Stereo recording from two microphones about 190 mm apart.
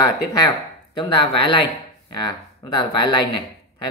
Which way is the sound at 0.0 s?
20° left (ahead or behind).